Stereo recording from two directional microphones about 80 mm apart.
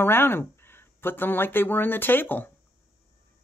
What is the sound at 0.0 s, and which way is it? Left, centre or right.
Speech, left.